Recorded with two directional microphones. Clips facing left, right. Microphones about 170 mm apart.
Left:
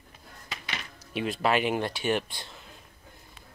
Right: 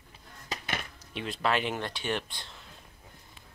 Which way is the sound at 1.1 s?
10° left (ahead or behind).